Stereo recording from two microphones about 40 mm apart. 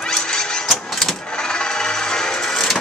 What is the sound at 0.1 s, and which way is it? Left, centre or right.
Vehicle, centre.